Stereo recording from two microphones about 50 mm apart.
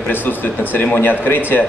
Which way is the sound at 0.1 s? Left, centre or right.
Left.